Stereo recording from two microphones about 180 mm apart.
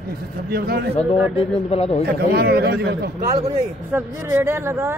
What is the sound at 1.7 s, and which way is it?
Speech, 35° left (ahead or behind).